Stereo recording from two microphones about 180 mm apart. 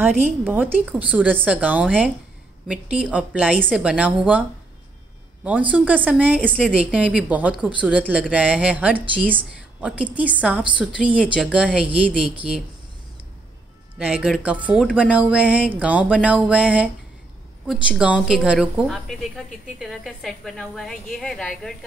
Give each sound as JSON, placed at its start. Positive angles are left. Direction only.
{"t": 0.0, "sound": "a woman's voice", "side_deg": -10}
{"t": 13.9, "sound": "a woman's voice", "side_deg": -5}